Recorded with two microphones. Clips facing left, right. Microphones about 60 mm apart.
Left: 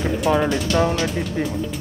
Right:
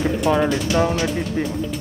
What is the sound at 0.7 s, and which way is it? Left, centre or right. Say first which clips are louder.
Speech: even; left.